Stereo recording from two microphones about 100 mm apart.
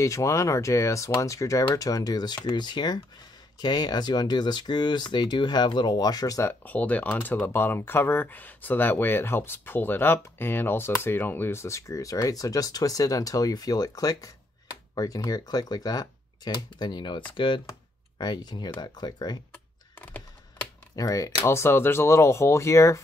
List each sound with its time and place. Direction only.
0.0 s speech: 30° left (ahead or behind)
6.6 s speech: 15° left (ahead or behind); by 19.4 s 45° left (ahead or behind)
20.0 s computer keyboard: 15° left (ahead or behind)
20.9 s speech: 35° left (ahead or behind)